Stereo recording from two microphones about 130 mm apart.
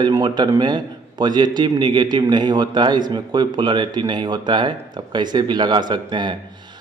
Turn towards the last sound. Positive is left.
turn(degrees=-35)  # may be behind; listen again after turning